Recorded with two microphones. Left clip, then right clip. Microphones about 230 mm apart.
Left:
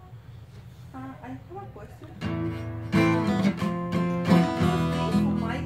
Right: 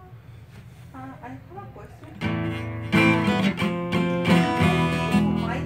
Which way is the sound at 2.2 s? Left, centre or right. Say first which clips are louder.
Right 3 dB; right.